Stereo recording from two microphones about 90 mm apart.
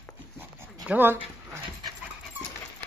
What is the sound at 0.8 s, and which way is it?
Speech, 20° right (ahead or behind).